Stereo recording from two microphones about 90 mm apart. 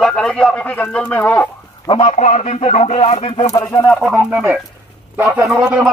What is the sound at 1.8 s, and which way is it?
Speech, 75° left (ahead or behind).